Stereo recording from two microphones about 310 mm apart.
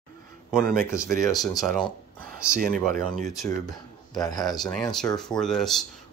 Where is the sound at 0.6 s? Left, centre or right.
Right.